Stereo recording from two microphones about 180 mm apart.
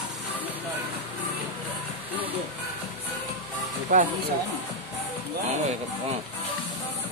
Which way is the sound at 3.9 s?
45° right (ahead or behind).